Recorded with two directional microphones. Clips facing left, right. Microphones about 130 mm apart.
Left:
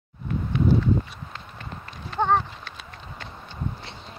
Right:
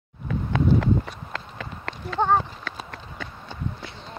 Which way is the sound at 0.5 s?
90° right.